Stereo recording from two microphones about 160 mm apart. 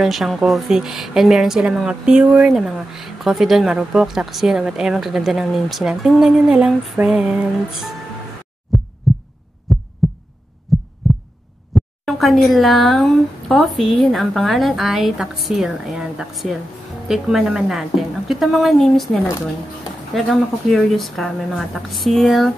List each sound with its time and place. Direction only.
0.0 s a woman's voice: centre (ahead or behind)
9.7 s pulse: centre (ahead or behind)
11.7 s a woman's voice: centre (ahead or behind)
20.2 s a woman's voice: centre (ahead or behind)